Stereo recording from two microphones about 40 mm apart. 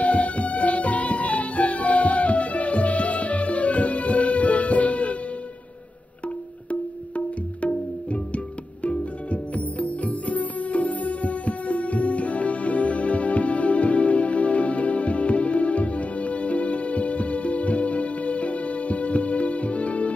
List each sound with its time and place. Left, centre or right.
0.0 s music: left
6.2 s music: left